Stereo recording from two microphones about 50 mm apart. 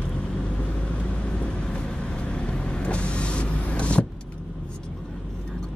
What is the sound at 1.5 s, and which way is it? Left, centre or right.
Vehicle, centre.